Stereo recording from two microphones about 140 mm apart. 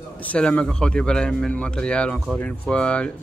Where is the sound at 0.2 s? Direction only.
10° left (ahead or behind).